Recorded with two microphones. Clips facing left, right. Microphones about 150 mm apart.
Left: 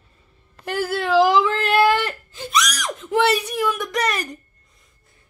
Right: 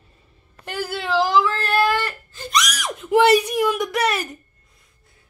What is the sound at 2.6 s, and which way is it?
Screaming, 5° right (ahead or behind).